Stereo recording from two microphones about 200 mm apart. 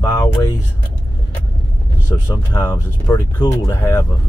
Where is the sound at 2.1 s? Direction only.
15° left (ahead or behind).